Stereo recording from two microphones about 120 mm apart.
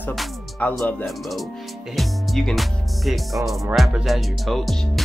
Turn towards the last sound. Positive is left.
turn(degrees=0)  # may be behind; listen again after turning